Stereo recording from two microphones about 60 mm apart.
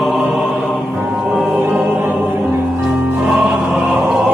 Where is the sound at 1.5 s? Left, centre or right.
Right.